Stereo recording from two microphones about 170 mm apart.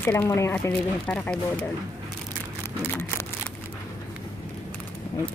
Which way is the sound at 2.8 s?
15° left (ahead or behind).